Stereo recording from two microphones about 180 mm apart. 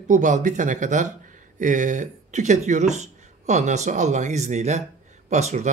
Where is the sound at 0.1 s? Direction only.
45° right (ahead or behind).